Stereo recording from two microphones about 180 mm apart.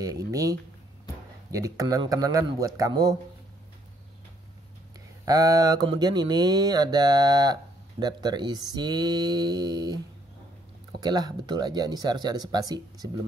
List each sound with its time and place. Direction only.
0.0 s speech: 20° right (ahead or behind)
5.2 s speech: 20° right (ahead or behind)